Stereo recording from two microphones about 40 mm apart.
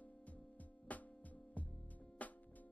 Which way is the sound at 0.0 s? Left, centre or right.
Left.